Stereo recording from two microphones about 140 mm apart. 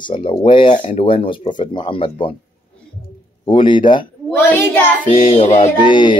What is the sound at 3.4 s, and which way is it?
Speech, 35° left (ahead or behind).